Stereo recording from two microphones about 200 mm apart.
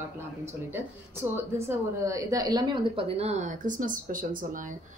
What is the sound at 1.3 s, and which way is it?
A woman's voice, 15° right (ahead or behind).